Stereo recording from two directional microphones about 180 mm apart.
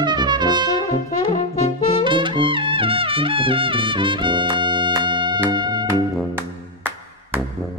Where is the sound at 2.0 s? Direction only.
25° right (ahead or behind).